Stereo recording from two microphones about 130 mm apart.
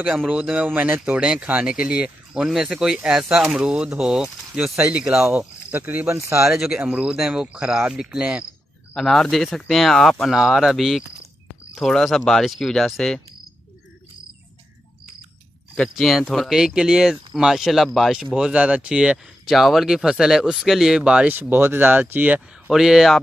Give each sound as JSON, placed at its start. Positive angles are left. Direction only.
{"t": 0.3, "sound": "speech", "side_deg": -10}
{"t": 6.5, "sound": "speech", "side_deg": -5}
{"t": 15.7, "sound": "speech", "side_deg": 5}